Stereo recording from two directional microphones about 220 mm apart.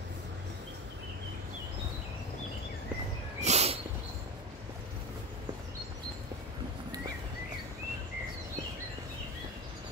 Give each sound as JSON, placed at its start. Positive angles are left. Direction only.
{"t": 3.3, "sound": "bird", "side_deg": -30}